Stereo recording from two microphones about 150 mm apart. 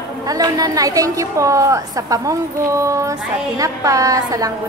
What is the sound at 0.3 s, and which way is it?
A woman's voice, 25° right (ahead or behind).